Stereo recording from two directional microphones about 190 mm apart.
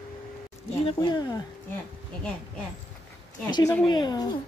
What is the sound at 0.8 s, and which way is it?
Speech, 25° left (ahead or behind).